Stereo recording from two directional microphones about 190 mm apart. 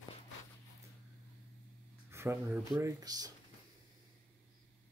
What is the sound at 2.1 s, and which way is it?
Speech, 15° right (ahead or behind).